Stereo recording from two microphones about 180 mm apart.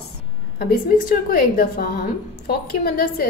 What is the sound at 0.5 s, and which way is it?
A woman's voice, 55° left (ahead or behind).